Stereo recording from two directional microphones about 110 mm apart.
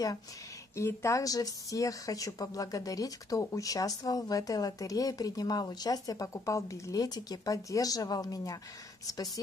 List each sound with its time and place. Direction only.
0.7 s speech: 25° left (ahead or behind)